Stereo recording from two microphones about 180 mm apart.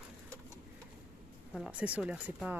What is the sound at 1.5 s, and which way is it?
Speech, 5° right (ahead or behind).